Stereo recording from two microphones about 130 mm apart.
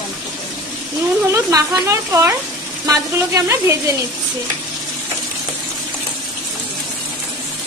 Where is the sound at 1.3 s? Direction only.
25° right (ahead or behind).